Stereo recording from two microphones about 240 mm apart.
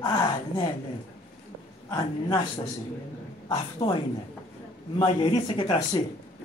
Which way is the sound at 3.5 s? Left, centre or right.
Left.